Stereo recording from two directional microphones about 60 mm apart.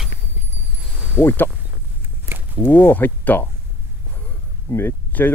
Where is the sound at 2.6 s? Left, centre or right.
Left.